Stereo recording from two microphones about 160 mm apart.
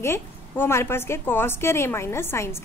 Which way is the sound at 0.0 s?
15° left (ahead or behind).